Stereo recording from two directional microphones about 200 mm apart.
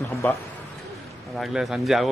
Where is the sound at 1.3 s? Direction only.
Centre (ahead or behind).